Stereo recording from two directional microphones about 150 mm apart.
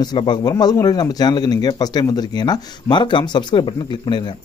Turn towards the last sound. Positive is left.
turn(degrees=30)  # may be behind; listen again after turning